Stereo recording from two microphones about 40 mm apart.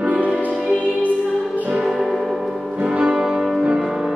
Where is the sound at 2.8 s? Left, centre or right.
Right.